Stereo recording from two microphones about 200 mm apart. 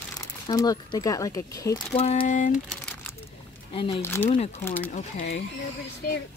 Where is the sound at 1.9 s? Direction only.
30° left (ahead or behind).